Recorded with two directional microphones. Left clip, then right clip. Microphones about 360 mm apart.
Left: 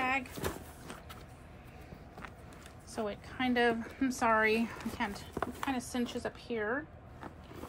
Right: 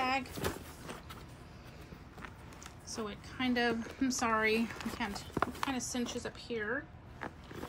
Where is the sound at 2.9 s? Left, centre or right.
Centre.